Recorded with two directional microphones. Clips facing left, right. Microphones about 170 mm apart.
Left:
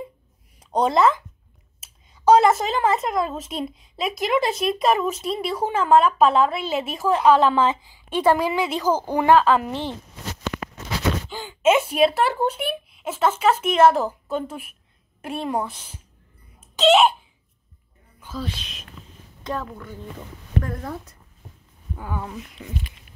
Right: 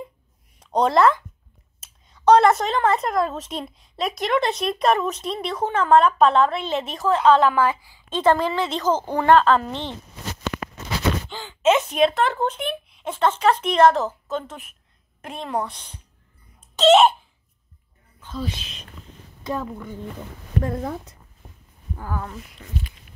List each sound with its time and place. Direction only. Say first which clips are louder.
0.6 s speech: right 1 dB; 5° left (ahead or behind)
11.3 s a woman's voice: left 1 dB; 10° left (ahead or behind)
16.5 s a sound: right 2 dB; centre (ahead or behind)
18.2 s speech: right 1 dB; 5° left (ahead or behind)
19.4 s a woman's voice: right 2 dB; 15° right (ahead or behind)
22.1 s a woman's voice: even; 10° left (ahead or behind)